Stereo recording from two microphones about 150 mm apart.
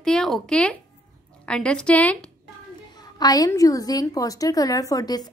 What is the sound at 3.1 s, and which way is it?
Speech, 25° left (ahead or behind).